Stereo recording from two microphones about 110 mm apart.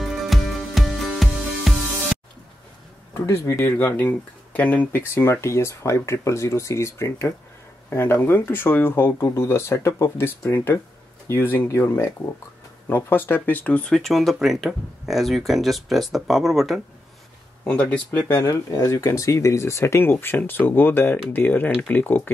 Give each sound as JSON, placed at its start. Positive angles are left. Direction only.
{"t": 0.0, "sound": "music", "side_deg": 0}
{"t": 3.2, "sound": "speech", "side_deg": 25}
{"t": 17.6, "sound": "speech", "side_deg": 10}
{"t": 18.4, "sound": "speech", "side_deg": 30}